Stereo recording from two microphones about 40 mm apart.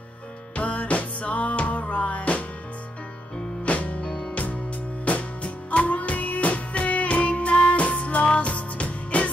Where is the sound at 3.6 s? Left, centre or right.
Left.